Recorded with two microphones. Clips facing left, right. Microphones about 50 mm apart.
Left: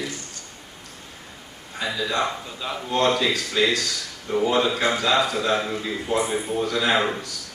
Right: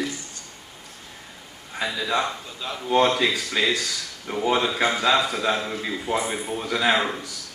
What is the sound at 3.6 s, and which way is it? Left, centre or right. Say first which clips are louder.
A man's voice: left 2 dB; right.